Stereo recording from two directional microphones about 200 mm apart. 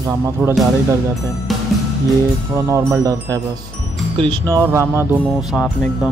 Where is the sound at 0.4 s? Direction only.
5° right (ahead or behind).